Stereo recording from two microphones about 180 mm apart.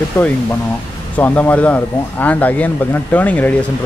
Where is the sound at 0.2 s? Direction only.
15° left (ahead or behind).